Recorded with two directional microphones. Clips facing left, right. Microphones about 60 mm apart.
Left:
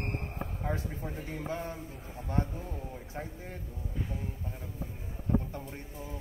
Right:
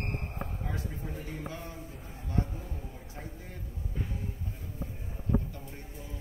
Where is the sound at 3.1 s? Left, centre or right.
Left.